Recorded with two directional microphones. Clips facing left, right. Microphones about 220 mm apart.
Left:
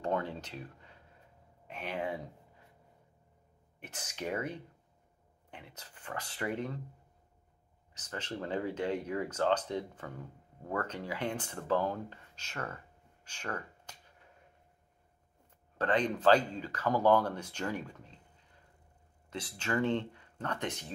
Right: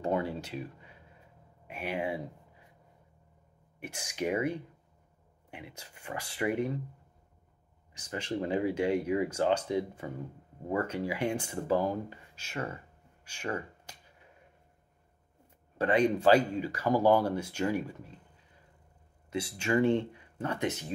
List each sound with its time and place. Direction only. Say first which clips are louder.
0.0 s speech: right 3 dB; 10° right (ahead or behind)
3.8 s speech: right 6 dB; 10° right (ahead or behind)
7.9 s speech: right 6 dB; 10° right (ahead or behind)
15.8 s speech: right 4 dB; 10° right (ahead or behind)
19.3 s speech: right 5 dB; 10° right (ahead or behind)